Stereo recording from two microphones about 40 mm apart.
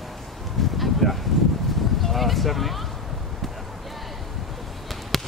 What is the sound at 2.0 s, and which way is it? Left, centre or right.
Speech, centre.